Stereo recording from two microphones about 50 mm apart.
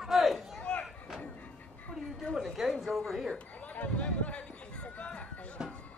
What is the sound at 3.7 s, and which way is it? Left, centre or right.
Run, left.